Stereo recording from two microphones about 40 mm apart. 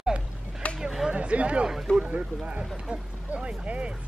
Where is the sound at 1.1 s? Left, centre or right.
Right.